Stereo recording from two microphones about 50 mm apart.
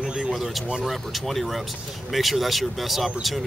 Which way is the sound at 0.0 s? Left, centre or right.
Centre.